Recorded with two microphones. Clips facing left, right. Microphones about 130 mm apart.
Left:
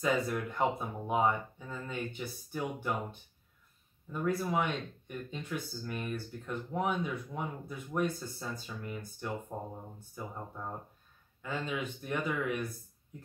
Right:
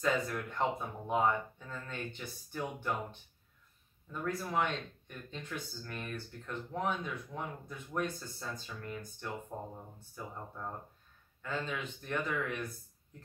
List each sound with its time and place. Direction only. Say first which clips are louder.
0.0 s speech: left 2 dB; 5° left (ahead or behind)